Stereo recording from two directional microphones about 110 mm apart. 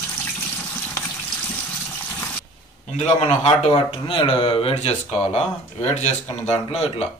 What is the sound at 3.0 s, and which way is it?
Speech, 65° left (ahead or behind).